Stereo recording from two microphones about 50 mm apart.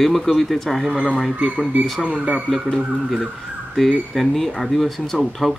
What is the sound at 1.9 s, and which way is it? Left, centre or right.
Speech, centre.